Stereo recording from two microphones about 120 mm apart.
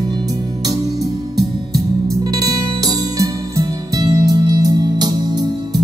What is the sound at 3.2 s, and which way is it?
Music, 30° right (ahead or behind).